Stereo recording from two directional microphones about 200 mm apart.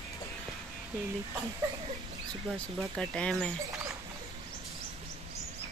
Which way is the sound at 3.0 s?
5° left (ahead or behind).